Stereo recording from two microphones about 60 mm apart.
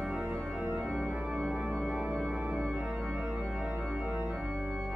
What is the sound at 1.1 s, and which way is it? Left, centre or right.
Organ, centre.